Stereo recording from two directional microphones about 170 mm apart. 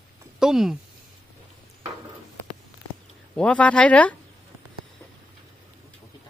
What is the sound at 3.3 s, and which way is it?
Speech, 5° left (ahead or behind).